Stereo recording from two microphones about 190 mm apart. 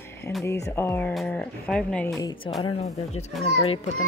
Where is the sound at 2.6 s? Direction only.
30° left (ahead or behind).